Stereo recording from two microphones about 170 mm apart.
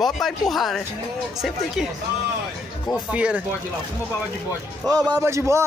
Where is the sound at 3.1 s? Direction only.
5° right (ahead or behind).